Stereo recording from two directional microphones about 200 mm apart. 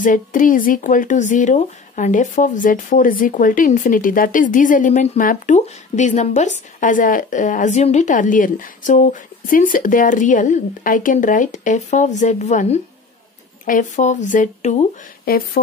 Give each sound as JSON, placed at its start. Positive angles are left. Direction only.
{"t": 0.0, "sound": "speech", "side_deg": 40}